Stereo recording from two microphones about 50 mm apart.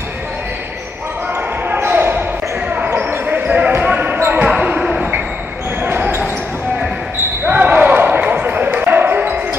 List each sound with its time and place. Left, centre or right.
1.9 s basketball bounce: right
4.5 s basketball bounce: centre
5.8 s basketball bounce: right
7.4 s basketball bounce: right